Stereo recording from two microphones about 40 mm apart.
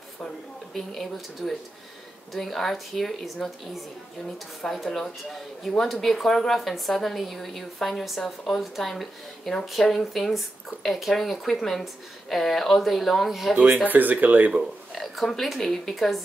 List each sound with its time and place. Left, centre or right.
1.4 s a woman's voice: centre
13.8 s speech: right
15.0 s speech: centre